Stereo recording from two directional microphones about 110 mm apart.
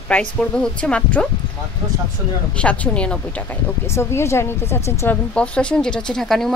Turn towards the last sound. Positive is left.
turn(degrees=5)  # may be behind; listen again after turning